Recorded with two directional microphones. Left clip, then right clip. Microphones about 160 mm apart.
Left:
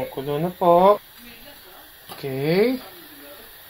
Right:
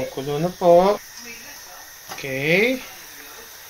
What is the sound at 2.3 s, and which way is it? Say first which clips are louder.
Speech: right 3 dB; 70° left (ahead or behind).